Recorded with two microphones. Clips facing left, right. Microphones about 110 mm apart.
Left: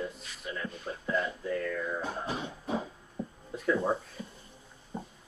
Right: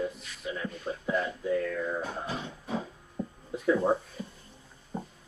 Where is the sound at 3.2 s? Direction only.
20° left (ahead or behind).